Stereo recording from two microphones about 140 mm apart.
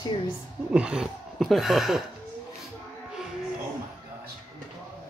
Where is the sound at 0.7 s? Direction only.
5° right (ahead or behind).